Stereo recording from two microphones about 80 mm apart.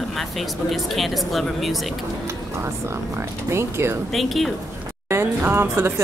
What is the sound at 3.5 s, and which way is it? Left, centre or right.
Speech, right.